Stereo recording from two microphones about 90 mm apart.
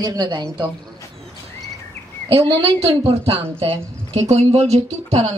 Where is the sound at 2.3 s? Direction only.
90° right.